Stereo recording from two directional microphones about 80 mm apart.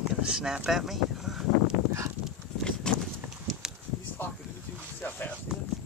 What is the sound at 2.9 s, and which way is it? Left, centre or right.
Horse, centre.